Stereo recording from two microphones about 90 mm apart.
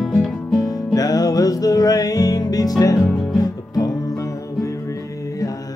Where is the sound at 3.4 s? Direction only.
45° left (ahead or behind).